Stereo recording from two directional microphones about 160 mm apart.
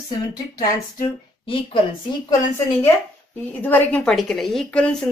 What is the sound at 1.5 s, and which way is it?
Speech, 35° left (ahead or behind).